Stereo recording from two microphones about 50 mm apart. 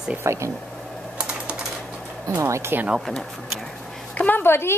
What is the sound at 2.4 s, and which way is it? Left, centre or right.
Speech, right.